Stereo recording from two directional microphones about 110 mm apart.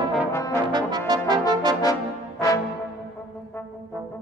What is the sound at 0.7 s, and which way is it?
Brass instrument, 40° right (ahead or behind).